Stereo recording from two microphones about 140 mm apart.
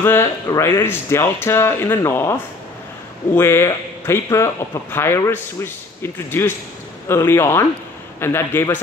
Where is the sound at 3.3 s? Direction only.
20° left (ahead or behind).